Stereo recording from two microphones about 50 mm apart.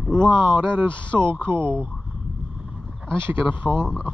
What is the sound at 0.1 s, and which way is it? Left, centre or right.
Speech, right.